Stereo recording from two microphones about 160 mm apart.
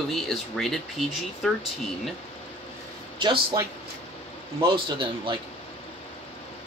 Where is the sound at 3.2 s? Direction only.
30° right (ahead or behind).